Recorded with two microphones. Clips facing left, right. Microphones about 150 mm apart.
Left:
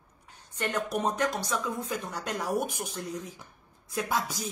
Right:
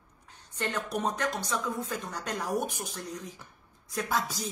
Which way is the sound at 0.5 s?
10° left (ahead or behind).